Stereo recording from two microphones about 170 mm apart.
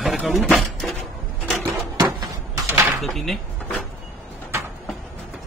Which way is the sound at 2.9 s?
Centre (ahead or behind).